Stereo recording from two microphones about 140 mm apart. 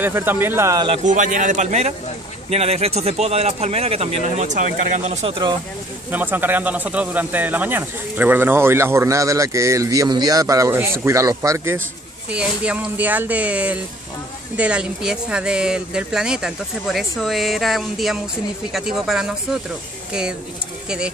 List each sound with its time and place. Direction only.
0.0 s speech: 15° right (ahead or behind)
1.0 s a man's voice: 65° right (ahead or behind); by 4.5 s 45° right (ahead or behind)
4.8 s a man's voice: 60° right (ahead or behind)
6.1 s speech: 15° right (ahead or behind)
12.3 s speech: 10° right (ahead or behind)